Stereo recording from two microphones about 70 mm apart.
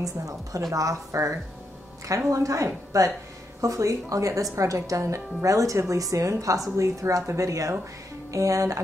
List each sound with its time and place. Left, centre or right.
0.0 s speech: right